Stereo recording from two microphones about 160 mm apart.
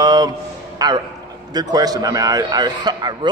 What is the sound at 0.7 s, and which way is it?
A man's voice, 25° right (ahead or behind).